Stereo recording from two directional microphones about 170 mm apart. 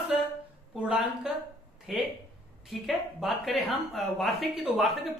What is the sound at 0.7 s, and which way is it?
A woman's voice, 5° right (ahead or behind).